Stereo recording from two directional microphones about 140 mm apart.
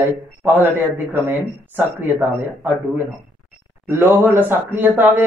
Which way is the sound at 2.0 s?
15° right (ahead or behind).